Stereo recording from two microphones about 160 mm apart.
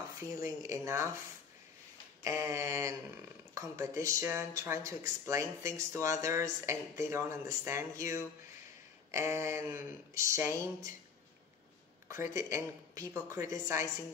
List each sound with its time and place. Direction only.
0.6 s speech: 20° right (ahead or behind)
2.2 s speech: 15° right (ahead or behind)
12.1 s speech: 20° right (ahead or behind)